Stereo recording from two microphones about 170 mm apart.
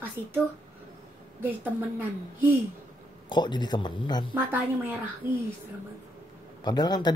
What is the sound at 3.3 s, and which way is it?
Speech, 25° left (ahead or behind).